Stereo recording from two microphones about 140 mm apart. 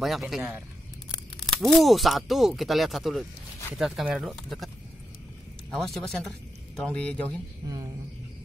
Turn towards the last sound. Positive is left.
turn(degrees=-25)  # may be behind; listen again after turning